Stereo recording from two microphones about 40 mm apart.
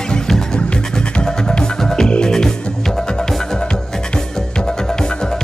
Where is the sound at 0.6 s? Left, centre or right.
Left.